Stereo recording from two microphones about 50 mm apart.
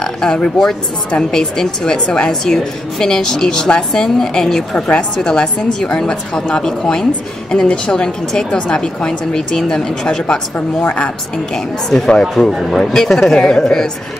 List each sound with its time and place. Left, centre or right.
0.0 s speech: centre
4.7 s a woman's voice: left
12.1 s speech: centre